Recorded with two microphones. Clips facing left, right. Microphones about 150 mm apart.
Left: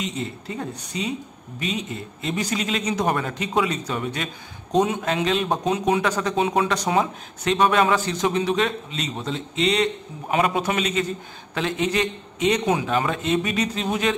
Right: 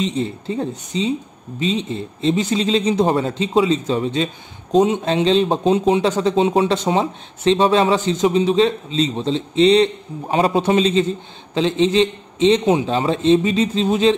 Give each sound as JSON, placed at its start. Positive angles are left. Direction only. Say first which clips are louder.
{"t": 0.0, "sound": "speech", "louder": "right 7 dB", "side_deg": -30}